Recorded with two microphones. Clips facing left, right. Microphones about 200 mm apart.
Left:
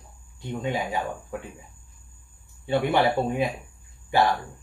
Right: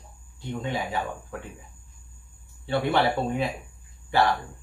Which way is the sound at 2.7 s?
15° left (ahead or behind).